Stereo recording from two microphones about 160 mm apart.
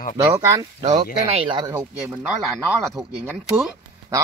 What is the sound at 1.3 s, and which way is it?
Speech, 35° right (ahead or behind).